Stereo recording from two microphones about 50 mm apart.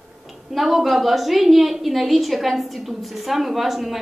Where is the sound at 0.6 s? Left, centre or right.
Centre.